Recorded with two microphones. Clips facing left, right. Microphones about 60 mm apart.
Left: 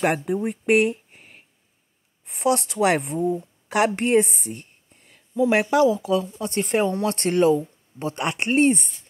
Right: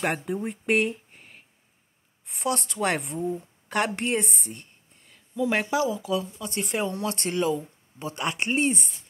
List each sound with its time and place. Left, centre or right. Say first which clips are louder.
0.0 s speech: left 5 dB; left
2.2 s a woman's voice: left 7 dB; left